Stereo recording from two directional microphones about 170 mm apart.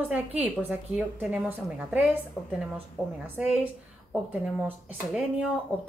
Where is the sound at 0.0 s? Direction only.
10° right (ahead or behind).